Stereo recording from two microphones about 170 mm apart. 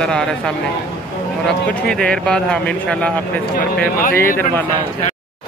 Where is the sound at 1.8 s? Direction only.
5° left (ahead or behind).